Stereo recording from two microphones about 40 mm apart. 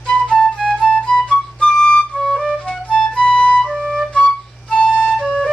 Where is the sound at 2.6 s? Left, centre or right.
Left.